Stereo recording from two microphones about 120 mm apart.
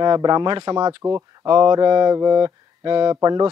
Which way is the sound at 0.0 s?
35° right (ahead or behind).